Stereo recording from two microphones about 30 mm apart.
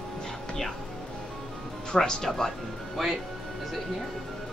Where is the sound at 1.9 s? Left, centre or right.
Left.